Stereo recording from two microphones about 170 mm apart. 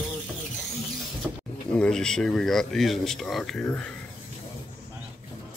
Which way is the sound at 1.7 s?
5° left (ahead or behind).